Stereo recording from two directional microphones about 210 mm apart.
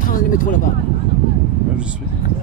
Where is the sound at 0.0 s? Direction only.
40° left (ahead or behind).